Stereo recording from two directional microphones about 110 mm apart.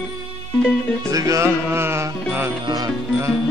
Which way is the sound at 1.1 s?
30° right (ahead or behind).